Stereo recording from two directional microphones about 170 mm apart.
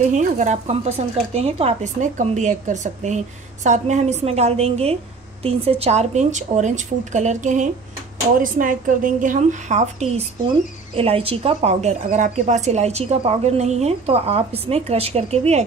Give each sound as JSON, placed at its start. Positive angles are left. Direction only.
{"t": 0.1, "sound": "a woman's voice", "side_deg": -45}